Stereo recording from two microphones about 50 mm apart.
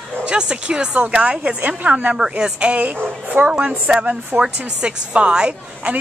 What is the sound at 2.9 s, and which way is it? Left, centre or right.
Speech, right.